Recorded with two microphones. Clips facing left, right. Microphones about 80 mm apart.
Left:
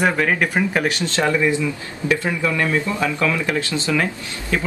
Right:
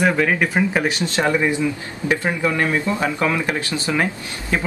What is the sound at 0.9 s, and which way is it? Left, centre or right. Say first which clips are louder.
Speech: even; right.